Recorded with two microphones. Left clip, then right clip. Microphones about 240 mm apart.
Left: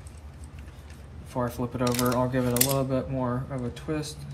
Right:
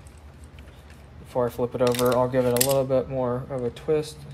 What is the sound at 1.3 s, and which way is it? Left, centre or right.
Speech, right.